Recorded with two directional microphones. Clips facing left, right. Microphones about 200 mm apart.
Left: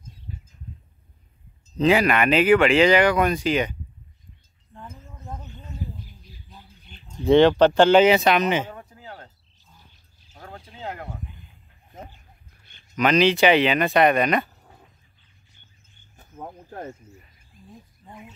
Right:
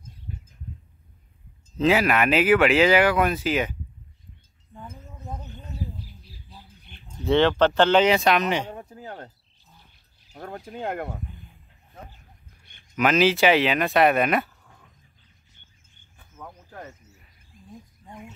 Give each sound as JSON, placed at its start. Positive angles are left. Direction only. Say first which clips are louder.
{"t": 1.8, "sound": "speech", "louder": "left 1 dB", "side_deg": 0}
{"t": 4.7, "sound": "a sound", "louder": "right 1 dB", "side_deg": 0}
{"t": 7.2, "sound": "speech", "louder": "left 4 dB", "side_deg": 15}
{"t": 8.9, "sound": "cricket", "louder": "right 4 dB", "side_deg": -40}
{"t": 10.3, "sound": "a sound", "louder": "right 7 dB", "side_deg": -50}
{"t": 12.9, "sound": "speech", "louder": "left 1 dB", "side_deg": -5}
{"t": 16.2, "sound": "cricket", "louder": "left 5 dB", "side_deg": 40}